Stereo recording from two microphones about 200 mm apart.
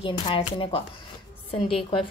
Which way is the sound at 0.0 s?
25° left (ahead or behind).